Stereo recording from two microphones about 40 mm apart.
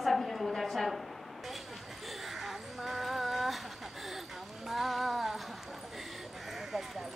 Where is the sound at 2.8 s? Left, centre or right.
Centre.